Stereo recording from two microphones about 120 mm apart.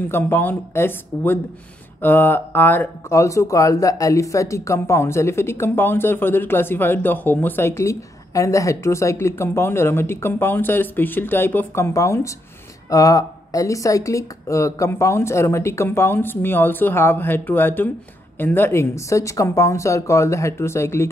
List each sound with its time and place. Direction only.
0.1 s speech: 15° left (ahead or behind)